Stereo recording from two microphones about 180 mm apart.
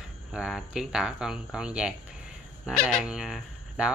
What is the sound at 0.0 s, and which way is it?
Speech, 5° right (ahead or behind).